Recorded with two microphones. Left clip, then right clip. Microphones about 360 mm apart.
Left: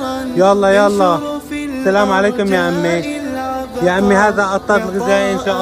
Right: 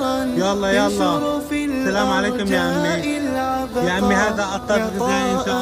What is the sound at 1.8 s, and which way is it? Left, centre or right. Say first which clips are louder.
Music: left 8 dB; centre.